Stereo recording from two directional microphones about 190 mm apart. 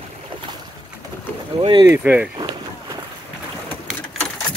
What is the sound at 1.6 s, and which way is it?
Speech, 25° right (ahead or behind).